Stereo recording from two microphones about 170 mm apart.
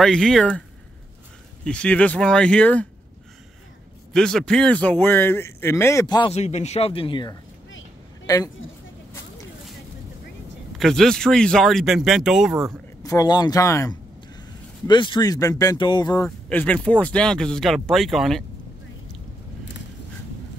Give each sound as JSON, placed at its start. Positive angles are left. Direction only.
{"t": 0.0, "sound": "a man's voice", "side_deg": 0}
{"t": 4.1, "sound": "a man's voice", "side_deg": 5}
{"t": 6.3, "sound": "speech", "side_deg": 40}
{"t": 10.8, "sound": "speech", "side_deg": 0}
{"t": 13.0, "sound": "speech", "side_deg": 20}
{"t": 16.3, "sound": "speech", "side_deg": 5}